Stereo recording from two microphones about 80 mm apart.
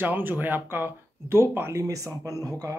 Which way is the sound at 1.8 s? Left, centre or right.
Right.